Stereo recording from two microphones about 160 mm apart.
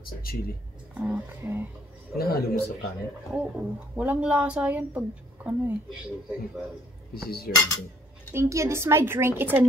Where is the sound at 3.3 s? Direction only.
5° right (ahead or behind).